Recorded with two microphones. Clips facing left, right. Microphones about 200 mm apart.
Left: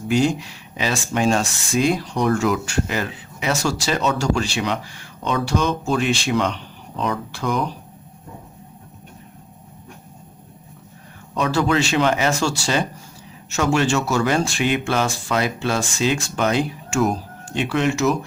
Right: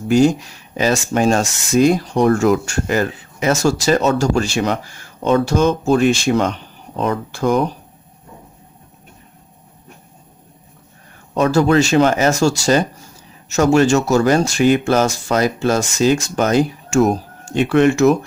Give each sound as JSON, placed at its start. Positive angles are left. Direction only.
{"t": 0.1, "sound": "speech", "side_deg": -45}
{"t": 11.3, "sound": "speech", "side_deg": -45}